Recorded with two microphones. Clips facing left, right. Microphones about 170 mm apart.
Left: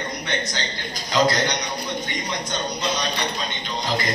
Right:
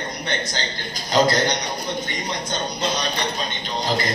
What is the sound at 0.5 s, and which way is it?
A man's voice, 35° right (ahead or behind).